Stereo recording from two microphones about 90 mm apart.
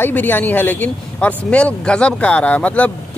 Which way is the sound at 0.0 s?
20° left (ahead or behind).